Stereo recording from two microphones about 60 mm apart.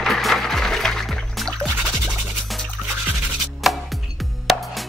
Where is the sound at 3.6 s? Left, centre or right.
Centre.